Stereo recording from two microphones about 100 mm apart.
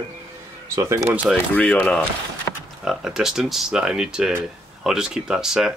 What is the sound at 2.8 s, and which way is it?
Speech, 5° right (ahead or behind).